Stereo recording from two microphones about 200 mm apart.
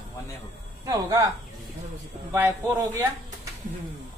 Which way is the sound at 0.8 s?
20° right (ahead or behind).